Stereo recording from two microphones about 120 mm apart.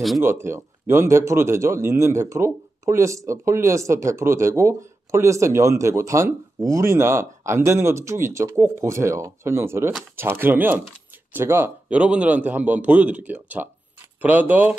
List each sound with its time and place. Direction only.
0.2 s a man's voice: 20° right (ahead or behind)